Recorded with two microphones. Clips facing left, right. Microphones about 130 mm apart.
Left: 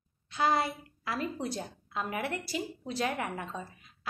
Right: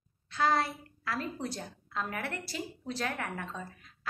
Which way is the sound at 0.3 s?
15° left (ahead or behind).